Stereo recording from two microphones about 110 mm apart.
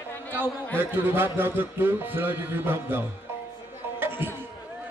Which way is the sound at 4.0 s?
20° right (ahead or behind).